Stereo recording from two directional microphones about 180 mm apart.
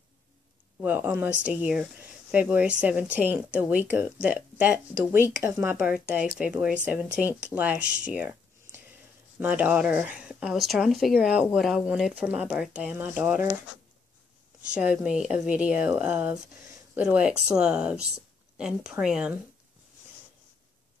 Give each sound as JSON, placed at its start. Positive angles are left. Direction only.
{"t": 0.7, "sound": "speech", "side_deg": -10}
{"t": 9.4, "sound": "speech", "side_deg": -10}
{"t": 14.7, "sound": "speech", "side_deg": -5}